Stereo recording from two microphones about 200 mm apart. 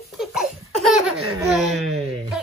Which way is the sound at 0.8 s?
Centre (ahead or behind).